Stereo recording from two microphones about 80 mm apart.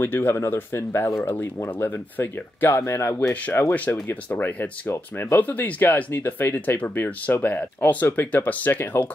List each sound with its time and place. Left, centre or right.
0.0 s speech: left